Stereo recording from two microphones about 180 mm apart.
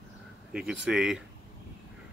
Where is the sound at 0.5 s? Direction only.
5° right (ahead or behind).